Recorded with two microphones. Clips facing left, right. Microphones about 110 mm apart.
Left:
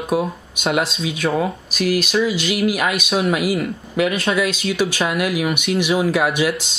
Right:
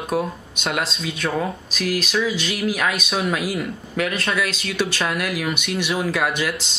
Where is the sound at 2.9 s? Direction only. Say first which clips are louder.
Left 4 dB; centre (ahead or behind).